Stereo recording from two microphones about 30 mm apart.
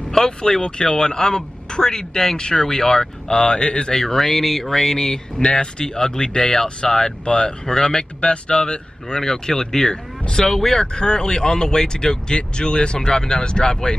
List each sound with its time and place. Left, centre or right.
0.1 s speech: left
3.9 s speech: centre
5.4 s speech: left
9.2 s speech: centre
10.9 s speech: left